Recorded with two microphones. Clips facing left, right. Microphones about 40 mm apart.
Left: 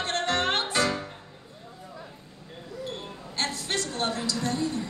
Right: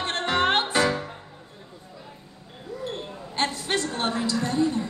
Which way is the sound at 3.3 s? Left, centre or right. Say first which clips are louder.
Right 4 dB; right.